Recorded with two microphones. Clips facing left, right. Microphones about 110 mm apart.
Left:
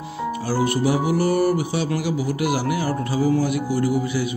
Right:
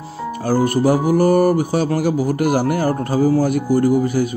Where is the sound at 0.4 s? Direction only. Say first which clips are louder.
Right 6 dB; 45° right (ahead or behind).